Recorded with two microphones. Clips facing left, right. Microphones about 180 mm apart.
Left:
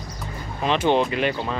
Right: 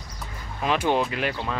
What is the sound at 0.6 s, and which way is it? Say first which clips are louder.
Speech: left 3 dB; 5° right (ahead or behind).